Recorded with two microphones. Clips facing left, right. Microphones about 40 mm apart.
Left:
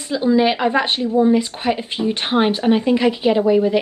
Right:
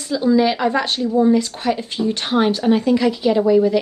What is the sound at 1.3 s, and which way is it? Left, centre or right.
A woman's voice, left.